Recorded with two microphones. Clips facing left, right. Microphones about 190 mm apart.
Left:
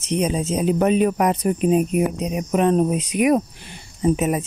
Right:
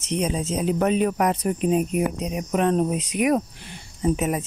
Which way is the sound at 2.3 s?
15° left (ahead or behind).